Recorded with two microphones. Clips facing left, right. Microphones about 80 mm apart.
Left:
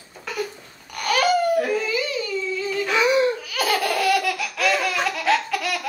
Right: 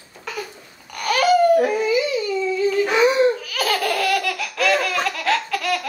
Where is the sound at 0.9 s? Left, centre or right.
Centre.